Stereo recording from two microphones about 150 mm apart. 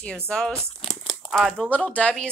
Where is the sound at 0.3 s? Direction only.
Centre (ahead or behind).